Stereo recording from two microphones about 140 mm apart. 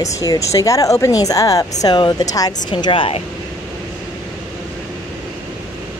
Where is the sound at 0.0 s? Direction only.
25° left (ahead or behind); by 3.3 s 40° left (ahead or behind).